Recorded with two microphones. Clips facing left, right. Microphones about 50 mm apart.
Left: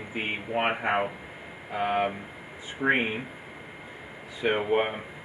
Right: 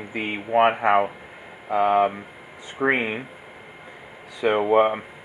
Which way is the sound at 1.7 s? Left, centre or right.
Right.